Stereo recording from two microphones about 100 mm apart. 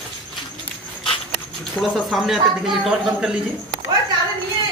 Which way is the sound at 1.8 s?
Centre (ahead or behind).